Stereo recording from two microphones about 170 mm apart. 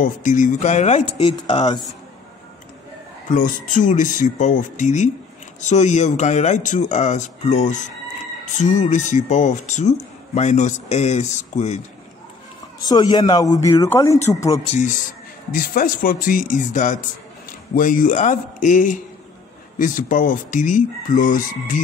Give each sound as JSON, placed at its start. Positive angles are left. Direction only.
{"t": 0.0, "sound": "speech", "side_deg": 50}
{"t": 3.3, "sound": "speech", "side_deg": 50}
{"t": 12.8, "sound": "speech", "side_deg": 25}
{"t": 14.7, "sound": "speech", "side_deg": 45}